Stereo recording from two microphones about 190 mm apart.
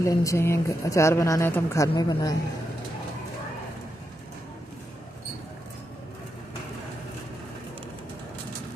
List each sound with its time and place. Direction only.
0.0 s a woman's voice: 15° left (ahead or behind)